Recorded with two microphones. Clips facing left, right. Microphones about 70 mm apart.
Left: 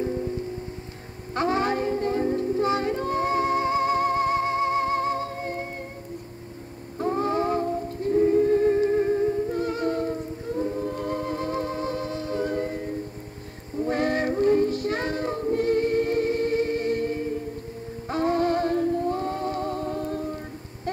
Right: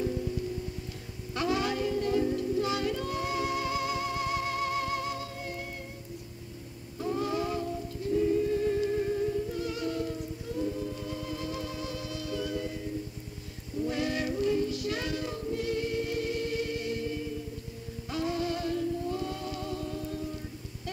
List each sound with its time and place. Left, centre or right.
0.0 s music: left
1.3 s music: left
7.0 s music: left
13.7 s child singing: left
18.0 s music: left